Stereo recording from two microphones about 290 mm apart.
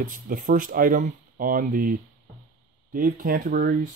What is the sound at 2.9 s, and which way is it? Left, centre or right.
Speech, right.